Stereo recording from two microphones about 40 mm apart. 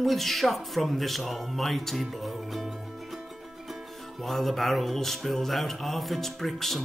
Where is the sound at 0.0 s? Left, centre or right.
Centre.